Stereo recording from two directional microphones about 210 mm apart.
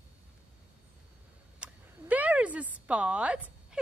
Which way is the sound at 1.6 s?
5° right (ahead or behind).